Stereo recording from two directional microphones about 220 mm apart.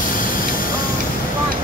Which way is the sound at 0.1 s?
40° left (ahead or behind).